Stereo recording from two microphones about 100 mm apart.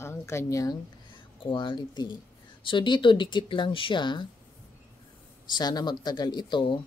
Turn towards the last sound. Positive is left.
turn(degrees=45)  # may be behind; listen again after turning